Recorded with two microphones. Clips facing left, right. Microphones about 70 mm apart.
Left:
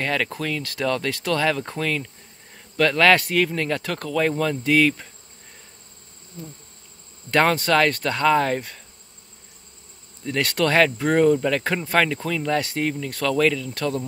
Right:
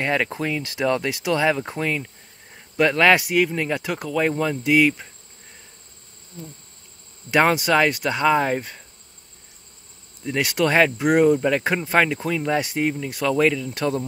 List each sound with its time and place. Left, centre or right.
0.0 s speech: right
7.2 s speech: centre
10.2 s speech: centre